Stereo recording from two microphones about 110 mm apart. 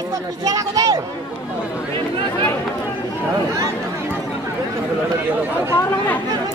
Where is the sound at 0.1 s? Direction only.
30° right (ahead or behind).